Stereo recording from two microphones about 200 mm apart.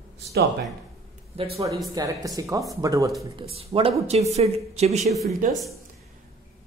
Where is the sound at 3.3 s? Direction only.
25° right (ahead or behind).